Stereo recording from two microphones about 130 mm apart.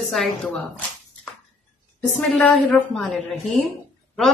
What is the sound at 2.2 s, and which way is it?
Speech, 5° left (ahead or behind).